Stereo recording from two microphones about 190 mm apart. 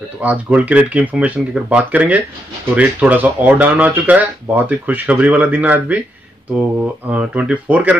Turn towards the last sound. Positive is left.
turn(degrees=-5)  # may be behind; listen again after turning